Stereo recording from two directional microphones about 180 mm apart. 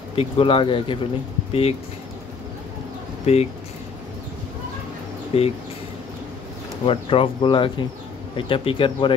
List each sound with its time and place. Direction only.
0.1 s speech: 30° left (ahead or behind)
3.3 s speech: 35° left (ahead or behind)
5.3 s speech: 35° left (ahead or behind)
6.9 s speech: 30° left (ahead or behind)